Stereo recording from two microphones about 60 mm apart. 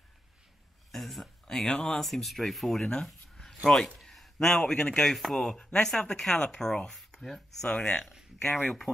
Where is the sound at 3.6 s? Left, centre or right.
Centre.